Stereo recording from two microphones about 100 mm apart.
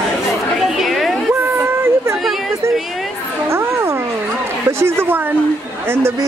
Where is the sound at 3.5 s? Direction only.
25° right (ahead or behind).